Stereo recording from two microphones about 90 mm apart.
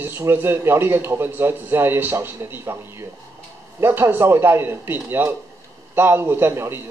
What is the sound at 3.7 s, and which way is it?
A man's voice, 25° right (ahead or behind).